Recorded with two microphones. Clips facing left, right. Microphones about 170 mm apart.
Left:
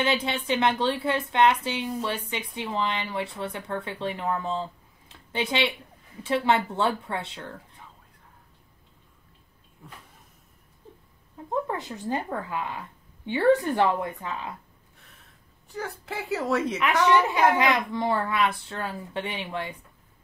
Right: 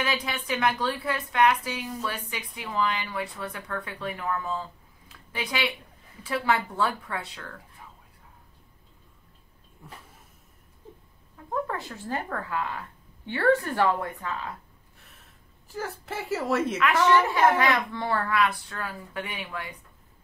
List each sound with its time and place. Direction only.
0.0 s a woman's voice: 25° left (ahead or behind)
11.5 s a woman's voice: 20° left (ahead or behind)
15.7 s speech: centre (ahead or behind)
16.8 s a woman's voice: 15° left (ahead or behind)